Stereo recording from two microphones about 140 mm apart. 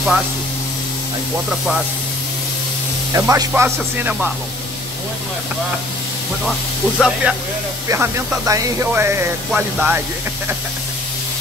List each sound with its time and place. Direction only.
3.1 s speech: 25° right (ahead or behind)
7.0 s speech: 5° right (ahead or behind)
7.9 s speech: 20° right (ahead or behind)